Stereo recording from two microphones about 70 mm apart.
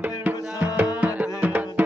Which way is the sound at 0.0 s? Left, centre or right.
Right.